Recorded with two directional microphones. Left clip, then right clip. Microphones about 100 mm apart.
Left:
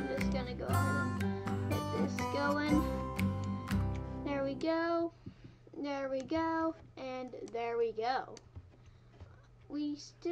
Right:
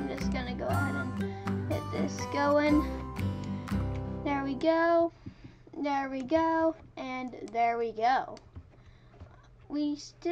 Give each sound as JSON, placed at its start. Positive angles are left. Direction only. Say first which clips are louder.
{"t": 0.0, "sound": "music", "louder": "right 1 dB", "side_deg": 0}
{"t": 0.3, "sound": "music", "louder": "right 3 dB", "side_deg": -30}
{"t": 0.7, "sound": "music", "louder": "right 2 dB", "side_deg": 0}
{"t": 2.2, "sound": "music", "louder": "right 9 dB", "side_deg": -30}
{"t": 2.9, "sound": "music", "louder": "left 1 dB", "side_deg": 0}
{"t": 4.2, "sound": "music", "louder": "right 5 dB", "side_deg": -30}
{"t": 5.8, "sound": "a child's voice", "louder": "right 7 dB", "side_deg": -30}
{"t": 6.2, "sound": "child singing", "louder": "right 10 dB", "side_deg": -30}
{"t": 7.5, "sound": "speech", "louder": "right 6 dB", "side_deg": -30}
{"t": 9.7, "sound": "speech", "louder": "right 6 dB", "side_deg": -30}